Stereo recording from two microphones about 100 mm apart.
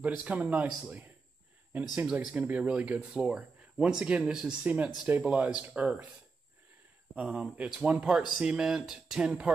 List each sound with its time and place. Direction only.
0.2 s speech: 15° right (ahead or behind)
7.2 s speech: 5° right (ahead or behind)